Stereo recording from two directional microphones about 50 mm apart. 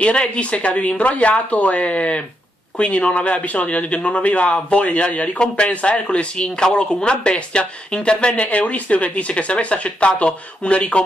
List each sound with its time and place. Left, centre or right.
0.0 s a man's voice: left